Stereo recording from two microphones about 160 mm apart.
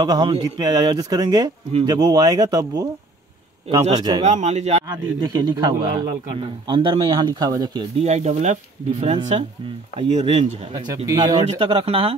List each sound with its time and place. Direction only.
0.0 s speech: 25° right (ahead or behind)
3.9 s speech: 25° right (ahead or behind)
4.2 s speech: 45° right (ahead or behind)
4.8 s speech: 25° right (ahead or behind)
8.0 s speech: 45° right (ahead or behind)
11.1 s speech: 25° right (ahead or behind)
11.5 s speech: 35° right (ahead or behind)